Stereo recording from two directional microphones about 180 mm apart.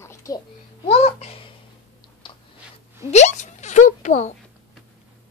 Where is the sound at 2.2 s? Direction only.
25° left (ahead or behind).